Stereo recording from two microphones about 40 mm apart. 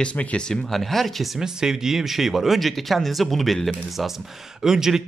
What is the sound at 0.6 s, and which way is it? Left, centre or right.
Speech, centre.